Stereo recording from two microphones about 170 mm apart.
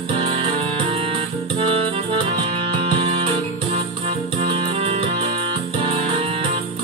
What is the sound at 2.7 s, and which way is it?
Music, 30° right (ahead or behind).